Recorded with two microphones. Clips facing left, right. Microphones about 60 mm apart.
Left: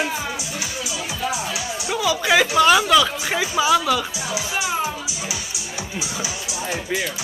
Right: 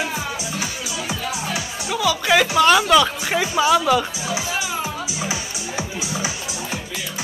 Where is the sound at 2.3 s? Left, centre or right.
Centre.